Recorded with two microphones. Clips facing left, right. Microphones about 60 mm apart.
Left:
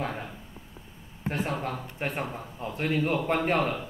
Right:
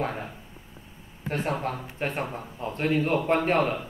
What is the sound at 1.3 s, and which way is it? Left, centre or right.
A man's voice, right.